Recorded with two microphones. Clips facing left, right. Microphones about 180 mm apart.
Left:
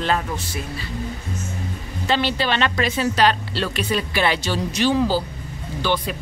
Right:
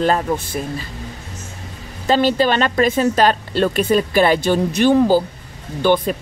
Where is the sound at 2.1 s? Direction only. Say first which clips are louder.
Right 6 dB; 45° right (ahead or behind).